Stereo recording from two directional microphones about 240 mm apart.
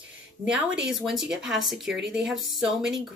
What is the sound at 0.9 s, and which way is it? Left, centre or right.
Speech, centre.